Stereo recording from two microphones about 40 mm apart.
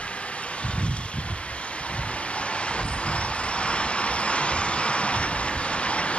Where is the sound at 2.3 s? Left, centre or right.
Left.